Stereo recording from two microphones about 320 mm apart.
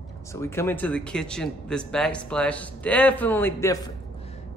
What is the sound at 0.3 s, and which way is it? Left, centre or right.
Speech, centre.